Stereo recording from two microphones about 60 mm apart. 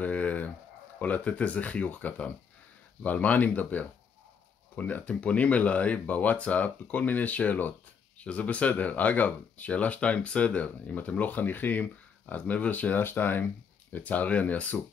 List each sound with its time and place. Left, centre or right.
0.0 s chicken: left
0.9 s speech: left